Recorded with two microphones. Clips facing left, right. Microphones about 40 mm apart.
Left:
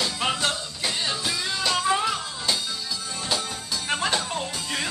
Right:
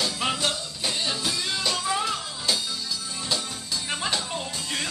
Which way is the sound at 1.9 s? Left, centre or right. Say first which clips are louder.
Left 4 dB; centre.